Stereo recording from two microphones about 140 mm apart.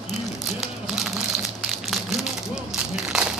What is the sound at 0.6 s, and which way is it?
Crumpling, centre (ahead or behind).